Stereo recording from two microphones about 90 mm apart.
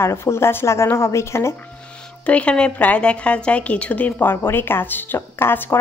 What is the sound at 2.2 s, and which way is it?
A woman's voice, 15° left (ahead or behind).